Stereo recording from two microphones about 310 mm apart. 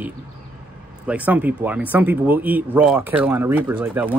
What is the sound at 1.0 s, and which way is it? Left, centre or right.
Speech, centre.